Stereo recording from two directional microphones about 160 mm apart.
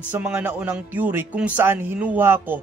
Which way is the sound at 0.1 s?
10° right (ahead or behind).